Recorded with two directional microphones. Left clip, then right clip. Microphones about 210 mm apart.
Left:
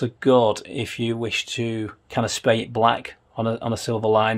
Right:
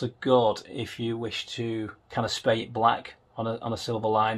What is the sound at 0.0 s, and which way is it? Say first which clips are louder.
Speech: left 5 dB; 50° left (ahead or behind).